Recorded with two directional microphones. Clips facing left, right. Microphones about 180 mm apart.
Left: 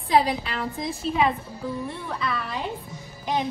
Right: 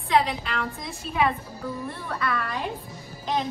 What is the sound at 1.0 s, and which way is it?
Speech, 30° left (ahead or behind).